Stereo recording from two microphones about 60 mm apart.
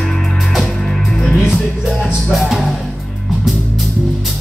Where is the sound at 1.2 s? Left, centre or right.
Centre.